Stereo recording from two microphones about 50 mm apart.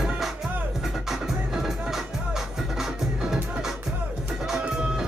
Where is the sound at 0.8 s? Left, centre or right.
Centre.